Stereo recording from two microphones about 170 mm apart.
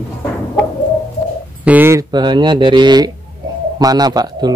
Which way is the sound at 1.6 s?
10° right (ahead or behind).